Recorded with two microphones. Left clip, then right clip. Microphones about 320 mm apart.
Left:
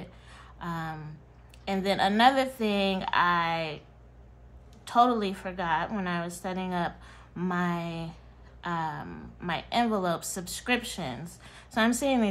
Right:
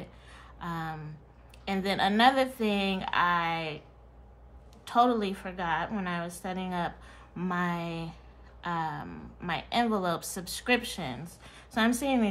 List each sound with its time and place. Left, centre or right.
0.0 s a sound: centre
1.6 s a woman's voice: centre
4.8 s a woman's voice: centre